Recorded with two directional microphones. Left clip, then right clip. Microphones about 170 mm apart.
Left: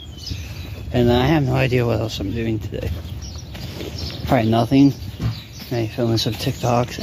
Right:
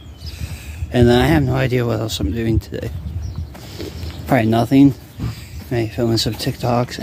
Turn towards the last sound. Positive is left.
turn(degrees=-25)  # may be behind; listen again after turning